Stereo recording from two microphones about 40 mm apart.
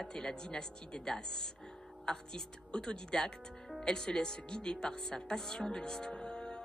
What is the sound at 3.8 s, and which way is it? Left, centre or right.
Music, centre.